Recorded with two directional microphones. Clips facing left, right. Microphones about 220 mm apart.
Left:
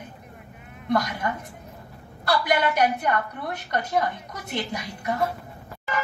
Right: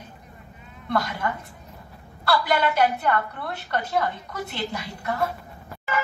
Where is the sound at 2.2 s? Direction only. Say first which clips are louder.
Even; 15° left (ahead or behind).